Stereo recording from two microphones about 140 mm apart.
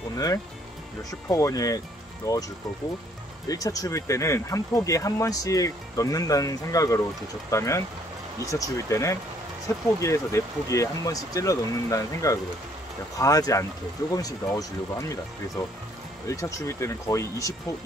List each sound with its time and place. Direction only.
1.3 s speech: 25° left (ahead or behind)
3.4 s speech: 25° left (ahead or behind)